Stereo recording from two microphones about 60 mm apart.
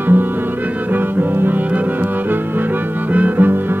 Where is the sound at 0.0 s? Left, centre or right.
Right.